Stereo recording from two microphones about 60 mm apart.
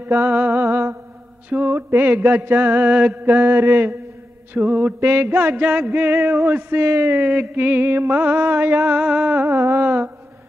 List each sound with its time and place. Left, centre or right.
0.0 s mantra: right
3.3 s mantra: right
7.2 s mantra: right
9.0 s mantra: right
9.6 s mantra: right